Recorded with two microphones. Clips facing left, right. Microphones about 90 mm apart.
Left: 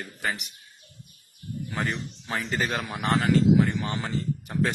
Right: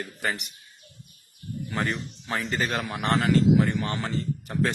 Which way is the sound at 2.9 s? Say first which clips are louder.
Even; centre (ahead or behind).